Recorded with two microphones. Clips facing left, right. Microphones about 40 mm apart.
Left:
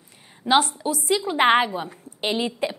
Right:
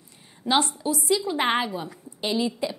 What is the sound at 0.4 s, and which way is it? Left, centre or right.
Speech, centre.